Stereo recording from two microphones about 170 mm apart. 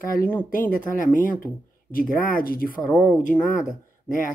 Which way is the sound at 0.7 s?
55° left (ahead or behind).